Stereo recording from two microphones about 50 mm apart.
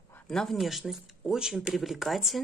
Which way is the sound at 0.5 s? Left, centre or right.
Centre.